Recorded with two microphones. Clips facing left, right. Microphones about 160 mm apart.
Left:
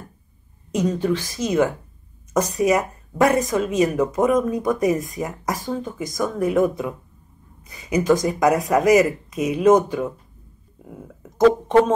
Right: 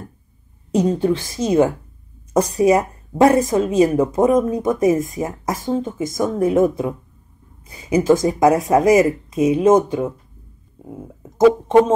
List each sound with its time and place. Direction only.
0.7 s speech: 30° right (ahead or behind)